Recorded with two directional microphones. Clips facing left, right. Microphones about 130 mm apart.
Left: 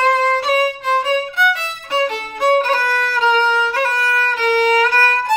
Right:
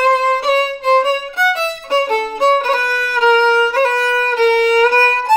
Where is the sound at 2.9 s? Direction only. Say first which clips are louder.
Right 6 dB; 10° right (ahead or behind).